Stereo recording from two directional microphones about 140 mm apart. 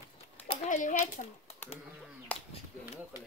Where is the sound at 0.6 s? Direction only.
65° left (ahead or behind).